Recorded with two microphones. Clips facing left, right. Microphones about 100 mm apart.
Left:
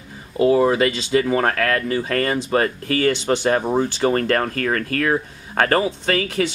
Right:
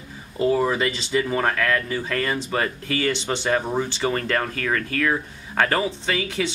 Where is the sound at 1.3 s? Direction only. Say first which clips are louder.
Left 3 dB; 40° left (ahead or behind).